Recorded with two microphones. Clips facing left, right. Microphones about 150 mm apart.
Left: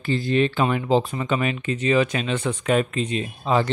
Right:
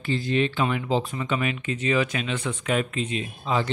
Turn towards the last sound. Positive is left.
turn(degrees=45)  # may be behind; listen again after turning